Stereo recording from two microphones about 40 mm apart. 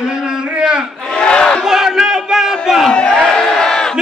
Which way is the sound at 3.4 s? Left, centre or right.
Centre.